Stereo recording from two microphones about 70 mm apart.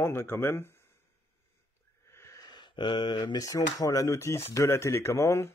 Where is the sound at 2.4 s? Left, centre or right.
Left.